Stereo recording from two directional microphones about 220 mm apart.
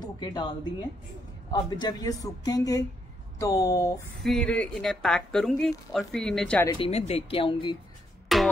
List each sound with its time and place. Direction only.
0.0 s speech: 20° left (ahead or behind)
1.5 s a man's voice: 20° left (ahead or behind)
4.2 s a woman's voice: centre (ahead or behind)
6.7 s speech: 25° left (ahead or behind)
8.3 s music: centre (ahead or behind)